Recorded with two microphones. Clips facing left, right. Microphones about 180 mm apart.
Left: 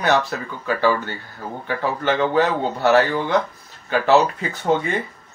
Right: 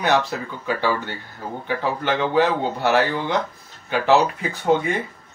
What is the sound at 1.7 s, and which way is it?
Speech, 15° right (ahead or behind).